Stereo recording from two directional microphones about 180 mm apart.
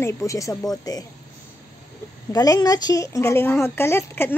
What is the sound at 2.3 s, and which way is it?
A woman's voice, 20° left (ahead or behind).